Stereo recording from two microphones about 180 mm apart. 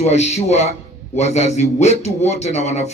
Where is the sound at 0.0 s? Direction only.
40° left (ahead or behind).